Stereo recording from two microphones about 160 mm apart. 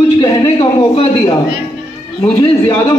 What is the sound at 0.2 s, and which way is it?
A man's voice, 25° left (ahead or behind).